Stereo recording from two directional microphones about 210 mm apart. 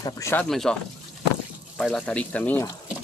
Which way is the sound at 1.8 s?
5° left (ahead or behind).